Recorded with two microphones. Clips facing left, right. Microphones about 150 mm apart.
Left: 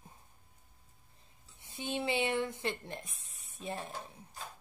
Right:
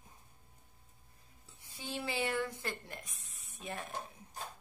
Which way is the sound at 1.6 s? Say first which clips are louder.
Left 5 dB; 20° left (ahead or behind).